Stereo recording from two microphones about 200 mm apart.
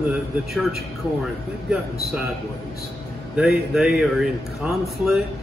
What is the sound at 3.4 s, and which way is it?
Speech, centre (ahead or behind).